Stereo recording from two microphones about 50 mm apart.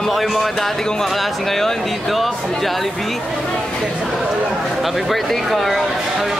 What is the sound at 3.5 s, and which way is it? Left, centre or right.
Speech, centre.